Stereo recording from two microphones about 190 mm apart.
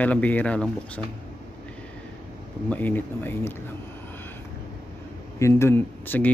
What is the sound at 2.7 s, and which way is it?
Speech, 10° left (ahead or behind).